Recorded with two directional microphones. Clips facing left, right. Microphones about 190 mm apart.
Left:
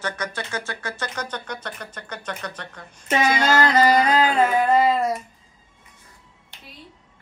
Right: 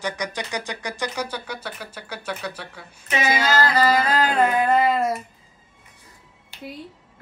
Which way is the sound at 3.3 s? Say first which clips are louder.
Even; 5° right (ahead or behind).